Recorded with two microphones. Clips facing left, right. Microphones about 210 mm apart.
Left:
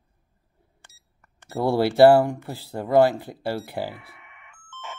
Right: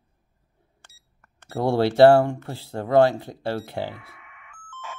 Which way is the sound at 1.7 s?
5° left (ahead or behind).